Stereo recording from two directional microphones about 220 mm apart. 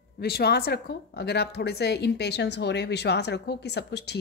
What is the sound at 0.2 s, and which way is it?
A woman's voice, 45° left (ahead or behind).